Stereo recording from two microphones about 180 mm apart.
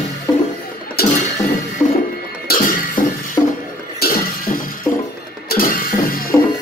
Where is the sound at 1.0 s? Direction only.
60° left (ahead or behind).